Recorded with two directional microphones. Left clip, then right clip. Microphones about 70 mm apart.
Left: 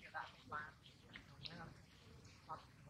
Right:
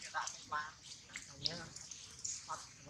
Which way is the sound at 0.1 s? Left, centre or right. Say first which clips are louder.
Right 8 dB; right.